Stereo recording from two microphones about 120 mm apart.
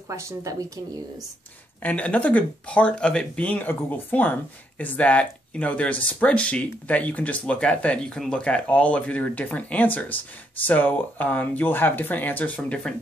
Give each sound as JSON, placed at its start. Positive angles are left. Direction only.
{"t": 0.1, "sound": "a woman's voice", "side_deg": -25}
{"t": 1.8, "sound": "speech", "side_deg": 10}